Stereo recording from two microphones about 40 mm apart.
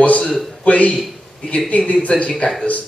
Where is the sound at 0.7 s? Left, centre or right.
Left.